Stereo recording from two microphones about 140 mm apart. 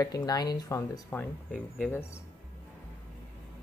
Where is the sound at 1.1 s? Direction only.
5° left (ahead or behind).